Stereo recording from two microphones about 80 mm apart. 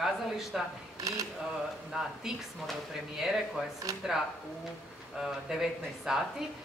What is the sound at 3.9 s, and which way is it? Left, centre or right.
Speech, right.